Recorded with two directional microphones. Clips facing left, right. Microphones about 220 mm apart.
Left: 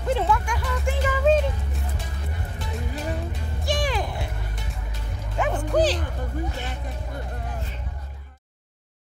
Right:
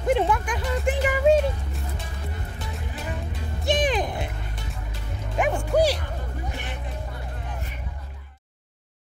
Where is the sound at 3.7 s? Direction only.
20° right (ahead or behind).